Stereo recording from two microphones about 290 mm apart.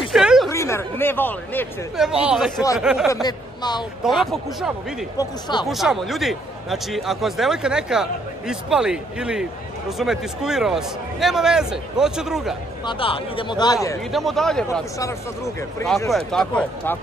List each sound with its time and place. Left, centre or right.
0.1 s a sound: centre
0.5 s speech: centre
3.1 s speech: centre
4.3 s speech: centre
5.1 s speech: centre
5.7 s speech: centre
12.8 s speech: centre
14.1 s speech: centre